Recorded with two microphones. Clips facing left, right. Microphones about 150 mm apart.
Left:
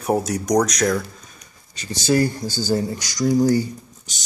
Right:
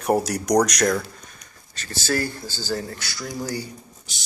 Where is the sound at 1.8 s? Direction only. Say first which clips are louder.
Left 7 dB; 15° left (ahead or behind).